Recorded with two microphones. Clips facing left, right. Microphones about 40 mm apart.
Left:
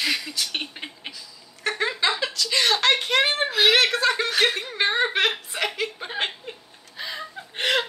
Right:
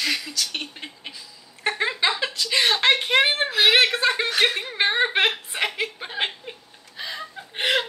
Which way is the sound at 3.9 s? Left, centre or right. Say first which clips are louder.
Even; centre.